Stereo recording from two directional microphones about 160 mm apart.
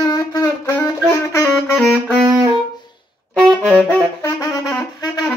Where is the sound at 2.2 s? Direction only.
20° right (ahead or behind).